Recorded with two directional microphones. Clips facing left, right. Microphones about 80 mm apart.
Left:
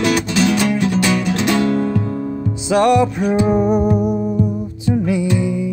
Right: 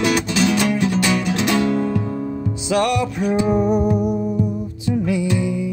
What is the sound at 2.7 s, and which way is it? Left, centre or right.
Music, left.